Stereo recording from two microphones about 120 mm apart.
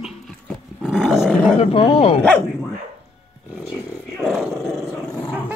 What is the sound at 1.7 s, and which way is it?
Bow-wow, 55° left (ahead or behind).